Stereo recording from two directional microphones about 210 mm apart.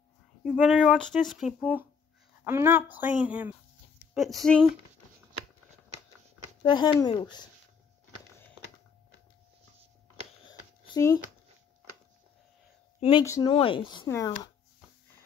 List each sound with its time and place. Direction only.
0.4 s speech: 5° right (ahead or behind)
6.6 s speech: 20° left (ahead or behind)
10.9 s speech: 15° left (ahead or behind)
13.2 s speech: 15° left (ahead or behind)
13.5 s speech: 25° left (ahead or behind)